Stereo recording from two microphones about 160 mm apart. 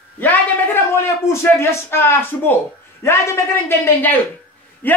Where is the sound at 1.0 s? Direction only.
15° left (ahead or behind).